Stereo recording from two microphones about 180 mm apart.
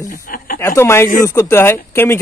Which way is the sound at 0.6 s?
15° left (ahead or behind).